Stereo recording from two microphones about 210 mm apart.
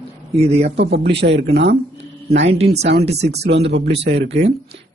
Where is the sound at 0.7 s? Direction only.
55° right (ahead or behind).